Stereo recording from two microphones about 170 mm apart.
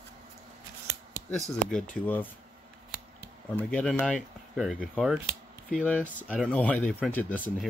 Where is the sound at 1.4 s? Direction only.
5° left (ahead or behind).